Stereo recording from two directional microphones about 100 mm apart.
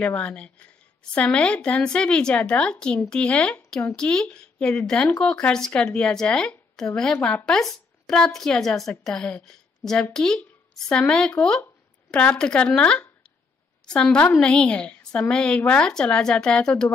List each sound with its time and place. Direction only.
0.0 s a woman's voice: 10° left (ahead or behind)